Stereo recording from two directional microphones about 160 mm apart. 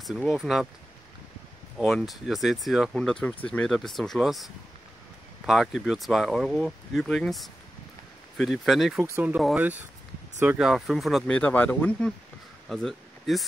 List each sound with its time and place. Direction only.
0.0 s speech: centre (ahead or behind)
1.8 s speech: centre (ahead or behind)
8.9 s speech: 15° right (ahead or behind); by 12.1 s 10° left (ahead or behind)
12.6 s a sound: centre (ahead or behind)